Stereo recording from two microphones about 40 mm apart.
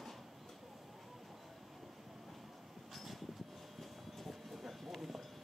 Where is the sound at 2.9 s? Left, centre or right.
Centre.